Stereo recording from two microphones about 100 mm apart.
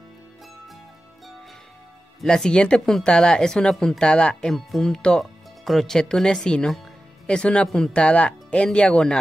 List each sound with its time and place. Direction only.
2.2 s speech: 5° left (ahead or behind)